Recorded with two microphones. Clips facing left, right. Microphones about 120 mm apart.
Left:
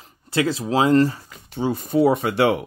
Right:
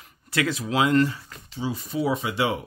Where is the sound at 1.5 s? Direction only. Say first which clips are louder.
Left 8 dB; 55° left (ahead or behind).